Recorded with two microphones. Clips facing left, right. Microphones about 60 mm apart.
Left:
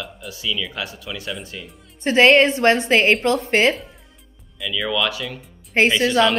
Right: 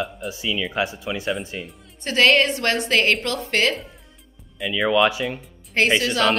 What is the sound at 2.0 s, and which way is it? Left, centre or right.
A woman's voice, left.